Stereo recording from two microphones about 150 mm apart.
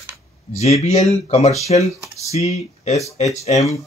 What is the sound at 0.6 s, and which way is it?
Speech, 45° left (ahead or behind).